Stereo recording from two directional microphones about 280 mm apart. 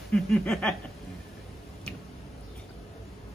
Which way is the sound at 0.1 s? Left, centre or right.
Centre.